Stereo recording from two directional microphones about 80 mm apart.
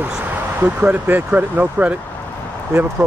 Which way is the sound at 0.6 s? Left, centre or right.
Right.